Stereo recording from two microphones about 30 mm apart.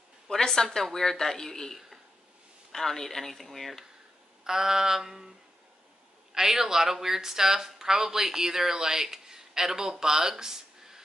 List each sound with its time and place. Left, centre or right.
0.4 s a woman's voice: centre
2.7 s speech: centre
4.5 s a sound: centre
6.3 s speech: centre